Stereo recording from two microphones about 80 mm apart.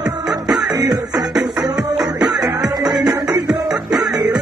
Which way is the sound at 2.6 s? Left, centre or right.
Right.